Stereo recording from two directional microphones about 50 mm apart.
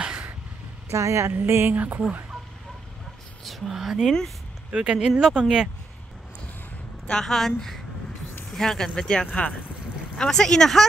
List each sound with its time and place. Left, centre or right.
0.8 s a woman's voice: right
1.3 s speech: right
1.7 s speech: right
3.4 s speech: centre
4.7 s speech: centre
7.1 s speech: centre